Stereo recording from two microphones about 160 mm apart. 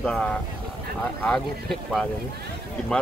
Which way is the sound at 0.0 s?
5° left (ahead or behind).